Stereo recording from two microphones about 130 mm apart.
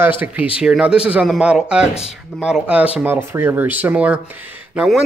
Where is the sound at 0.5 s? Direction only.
10° right (ahead or behind).